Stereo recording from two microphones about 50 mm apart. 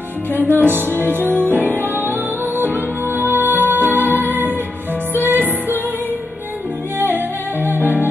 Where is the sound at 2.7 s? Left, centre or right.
Left.